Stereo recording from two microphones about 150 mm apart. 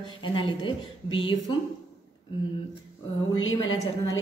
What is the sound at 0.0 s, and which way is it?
Speech, 35° left (ahead or behind).